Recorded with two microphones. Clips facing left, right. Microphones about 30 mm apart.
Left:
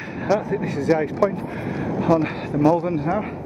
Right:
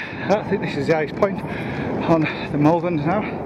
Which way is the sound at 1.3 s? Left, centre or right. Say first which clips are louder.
Right 1 dB; right.